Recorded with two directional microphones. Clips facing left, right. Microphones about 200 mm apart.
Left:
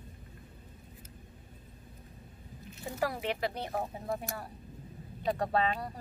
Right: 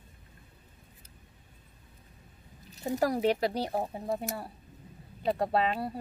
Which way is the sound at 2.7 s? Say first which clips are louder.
Right 6 dB; 40° right (ahead or behind).